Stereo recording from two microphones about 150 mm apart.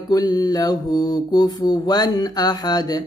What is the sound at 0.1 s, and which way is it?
Mantra, 25° left (ahead or behind).